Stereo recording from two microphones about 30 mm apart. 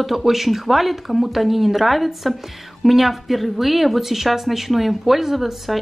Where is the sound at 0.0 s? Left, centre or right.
Centre.